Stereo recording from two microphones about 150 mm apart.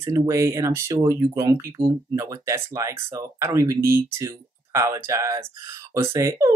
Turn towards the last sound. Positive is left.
turn(degrees=-20)  # may be behind; listen again after turning